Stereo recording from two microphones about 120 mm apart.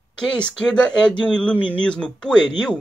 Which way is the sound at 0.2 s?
5° left (ahead or behind).